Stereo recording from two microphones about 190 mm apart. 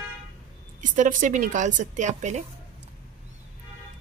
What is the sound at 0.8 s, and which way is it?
A woman's voice, 45° right (ahead or behind).